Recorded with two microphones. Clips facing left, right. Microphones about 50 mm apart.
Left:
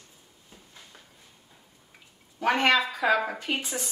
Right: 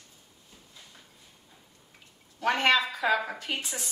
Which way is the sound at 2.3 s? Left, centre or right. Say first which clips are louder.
Left 1 dB; centre.